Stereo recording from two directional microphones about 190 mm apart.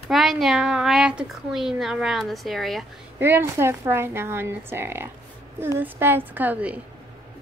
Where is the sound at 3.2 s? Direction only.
15° right (ahead or behind).